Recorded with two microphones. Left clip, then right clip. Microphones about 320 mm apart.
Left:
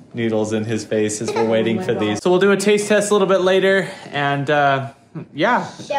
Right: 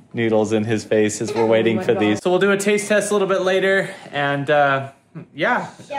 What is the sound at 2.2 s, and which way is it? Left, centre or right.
A man's voice, centre.